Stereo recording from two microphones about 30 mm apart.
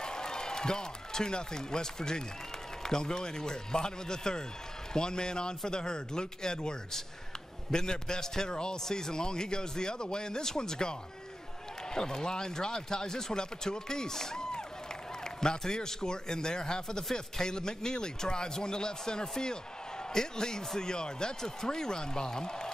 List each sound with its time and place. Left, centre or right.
0.0 s a man's voice: left